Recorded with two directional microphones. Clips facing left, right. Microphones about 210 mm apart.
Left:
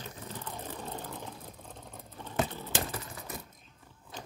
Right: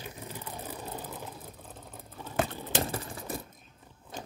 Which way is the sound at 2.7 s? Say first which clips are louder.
Right 4 dB; 30° right (ahead or behind).